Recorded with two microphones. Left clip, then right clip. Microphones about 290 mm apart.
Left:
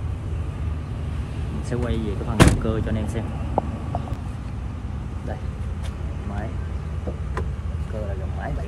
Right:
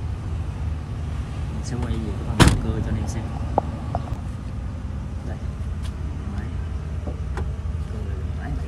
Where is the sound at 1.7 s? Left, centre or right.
Centre.